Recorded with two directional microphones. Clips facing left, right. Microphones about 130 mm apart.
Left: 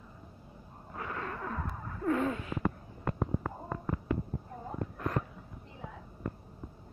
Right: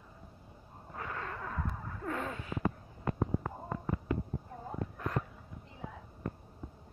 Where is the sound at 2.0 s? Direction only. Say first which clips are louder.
Left 8 dB; 30° left (ahead or behind).